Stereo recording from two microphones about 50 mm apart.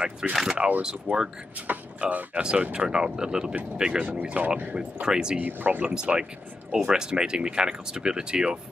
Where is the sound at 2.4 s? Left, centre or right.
Centre.